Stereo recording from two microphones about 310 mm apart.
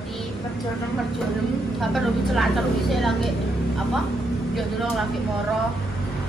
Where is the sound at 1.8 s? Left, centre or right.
Centre.